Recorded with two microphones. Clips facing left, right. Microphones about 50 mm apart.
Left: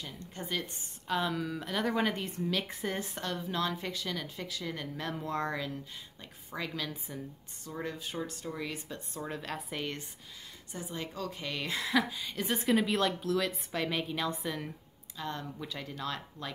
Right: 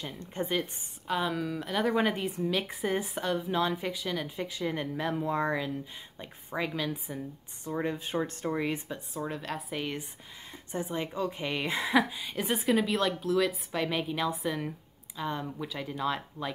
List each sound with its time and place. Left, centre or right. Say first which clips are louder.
0.0 s speech: right 7 dB; right
1.0 s a woman's voice: right 2 dB; centre
4.5 s speech: right 6 dB; right
4.9 s a woman's voice: right 3 dB; centre
7.6 s speech: right 6 dB; right
8.9 s a woman's voice: right 3 dB; centre
10.7 s a woman's voice: right 7 dB; right